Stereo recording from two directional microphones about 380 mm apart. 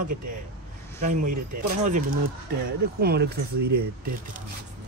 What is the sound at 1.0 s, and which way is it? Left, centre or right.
Speech, right.